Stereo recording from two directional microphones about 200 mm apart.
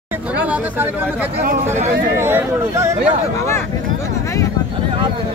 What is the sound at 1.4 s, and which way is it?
Speech, 45° right (ahead or behind).